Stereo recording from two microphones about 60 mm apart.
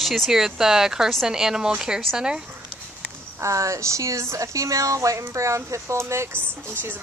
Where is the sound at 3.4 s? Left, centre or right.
Right.